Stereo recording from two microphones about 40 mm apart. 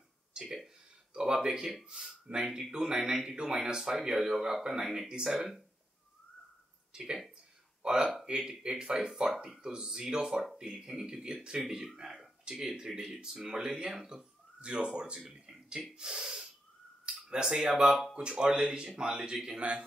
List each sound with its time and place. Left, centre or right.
0.3 s a sound: centre
1.1 s a man's voice: centre
5.0 s a man's voice: right
6.9 s a man's voice: centre
15.1 s a man's voice: centre